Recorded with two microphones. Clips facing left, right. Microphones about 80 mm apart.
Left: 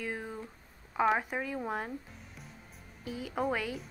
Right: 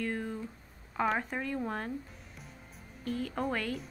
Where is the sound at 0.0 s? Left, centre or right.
Centre.